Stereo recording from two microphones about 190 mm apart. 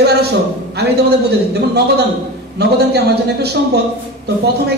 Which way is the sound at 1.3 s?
60° right (ahead or behind).